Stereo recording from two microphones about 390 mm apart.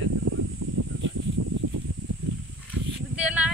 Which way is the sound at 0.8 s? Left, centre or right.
Right.